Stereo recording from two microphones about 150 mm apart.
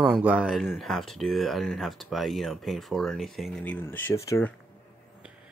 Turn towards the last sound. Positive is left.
turn(degrees=20)  # may be behind; listen again after turning